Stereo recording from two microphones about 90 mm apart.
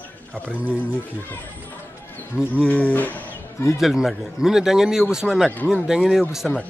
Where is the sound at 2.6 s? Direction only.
15° left (ahead or behind).